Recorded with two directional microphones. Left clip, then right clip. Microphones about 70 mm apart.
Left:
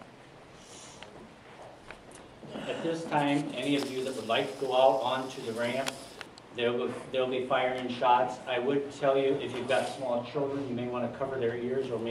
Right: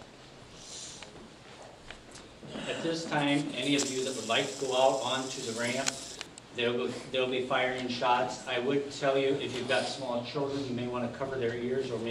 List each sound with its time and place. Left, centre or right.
2.5 s a sound: centre
3.1 s a man's voice: centre
9.7 s a man's voice: centre
10.3 s a man's voice: centre